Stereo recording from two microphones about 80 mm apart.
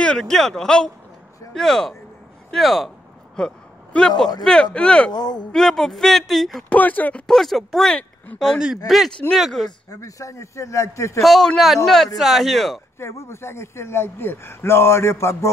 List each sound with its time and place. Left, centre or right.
0.0 s a man's voice: centre
3.3 s a sound: centre
4.4 s speech: centre
5.1 s speech: left
5.5 s a man's voice: centre
6.7 s speech: centre
7.2 s a man's voice: centre
9.8 s a man's voice: left
11.2 s a man's voice: centre
13.0 s a man's voice: left